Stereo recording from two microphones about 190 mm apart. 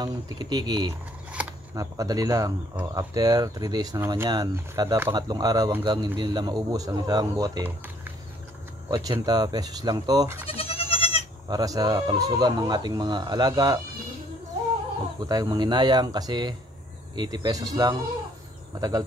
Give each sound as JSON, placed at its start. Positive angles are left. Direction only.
{"t": 0.0, "sound": "speech", "side_deg": -20}
{"t": 10.4, "sound": "goat", "side_deg": 30}
{"t": 11.4, "sound": "speech", "side_deg": -20}
{"t": 15.1, "sound": "speech", "side_deg": -20}